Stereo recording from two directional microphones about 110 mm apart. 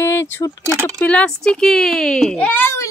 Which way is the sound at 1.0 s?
10° left (ahead or behind).